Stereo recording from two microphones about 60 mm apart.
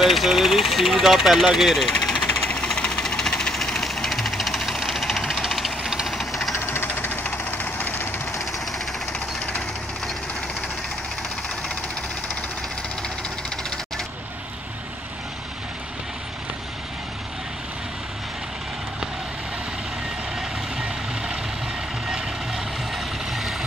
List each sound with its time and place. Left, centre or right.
0.0 s speech: centre
2.5 s vehicle: centre
5.8 s engine knocking: centre
6.1 s engine knocking: centre
6.6 s engine knocking: left
22.0 s vehicle: centre